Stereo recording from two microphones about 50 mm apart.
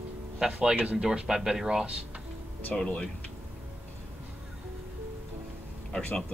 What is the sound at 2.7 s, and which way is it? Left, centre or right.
Speech, centre.